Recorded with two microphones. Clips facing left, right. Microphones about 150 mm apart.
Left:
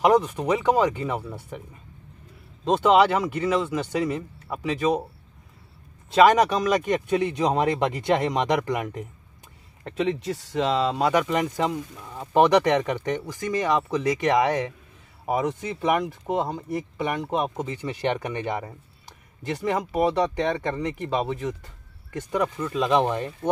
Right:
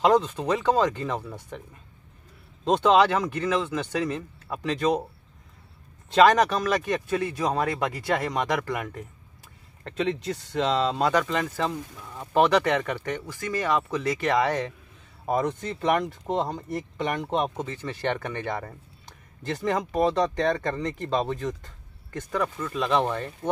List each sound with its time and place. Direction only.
0.0 s speech: 10° left (ahead or behind)
6.0 s speech: 10° left (ahead or behind)